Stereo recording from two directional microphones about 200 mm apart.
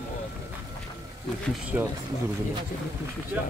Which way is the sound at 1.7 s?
10° right (ahead or behind).